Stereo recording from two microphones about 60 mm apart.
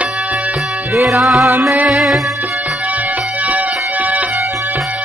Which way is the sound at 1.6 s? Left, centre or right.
Right.